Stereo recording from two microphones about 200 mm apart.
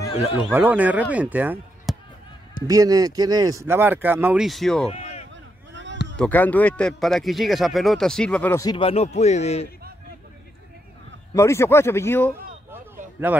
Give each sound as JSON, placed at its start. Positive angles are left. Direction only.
{"t": 0.5, "sound": "speech", "side_deg": -10}
{"t": 4.8, "sound": "a sound", "side_deg": 30}
{"t": 5.3, "sound": "a sound", "side_deg": -65}
{"t": 6.1, "sound": "a man's voice", "side_deg": 5}
{"t": 8.6, "sound": "speech", "side_deg": 25}
{"t": 11.3, "sound": "a man's voice", "side_deg": 15}
{"t": 13.2, "sound": "speech", "side_deg": -10}